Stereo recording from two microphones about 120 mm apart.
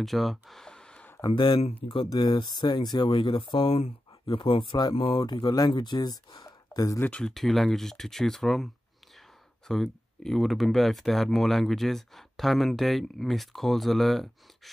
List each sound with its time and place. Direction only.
0.0 s a sound: centre (ahead or behind)
1.3 s speech: 40° left (ahead or behind)
7.0 s speech: 10° left (ahead or behind)
9.7 s speech: 5° left (ahead or behind)